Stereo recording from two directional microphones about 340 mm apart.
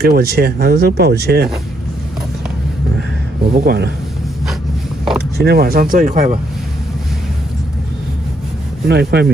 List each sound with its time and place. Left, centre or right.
0.0 s speech: right
3.5 s speech: right
5.4 s speech: right
8.8 s speech: right